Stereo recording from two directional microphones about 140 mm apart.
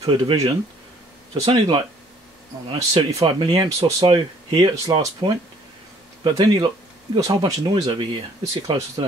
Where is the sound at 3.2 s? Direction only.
40° right (ahead or behind).